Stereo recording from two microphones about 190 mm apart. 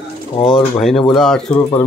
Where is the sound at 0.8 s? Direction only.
Centre (ahead or behind).